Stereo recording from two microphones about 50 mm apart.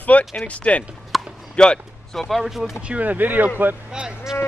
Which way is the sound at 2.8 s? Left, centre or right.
Right.